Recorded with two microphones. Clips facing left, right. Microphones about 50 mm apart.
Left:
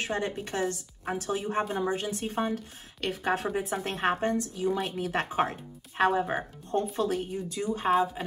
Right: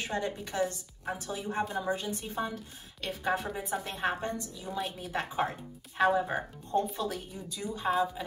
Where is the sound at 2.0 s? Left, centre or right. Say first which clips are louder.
Left 4 dB; left.